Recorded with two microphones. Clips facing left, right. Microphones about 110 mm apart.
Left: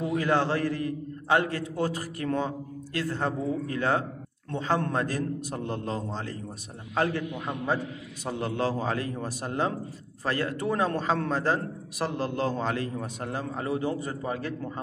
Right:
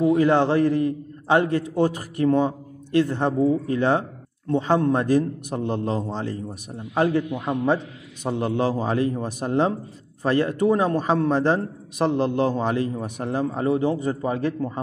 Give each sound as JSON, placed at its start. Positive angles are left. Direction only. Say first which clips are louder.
{"t": 0.0, "sound": "a man's voice", "louder": "right 8 dB", "side_deg": -20}